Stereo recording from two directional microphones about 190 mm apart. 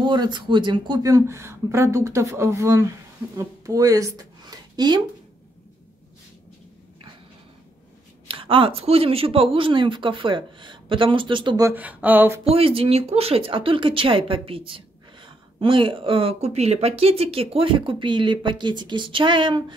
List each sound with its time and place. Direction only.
0.0 s speech: 25° right (ahead or behind)
8.3 s speech: 30° right (ahead or behind); by 12.4 s 10° right (ahead or behind)
12.4 s speech: 30° right (ahead or behind)